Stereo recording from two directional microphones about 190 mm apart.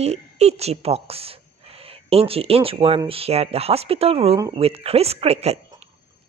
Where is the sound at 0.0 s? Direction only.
35° right (ahead or behind).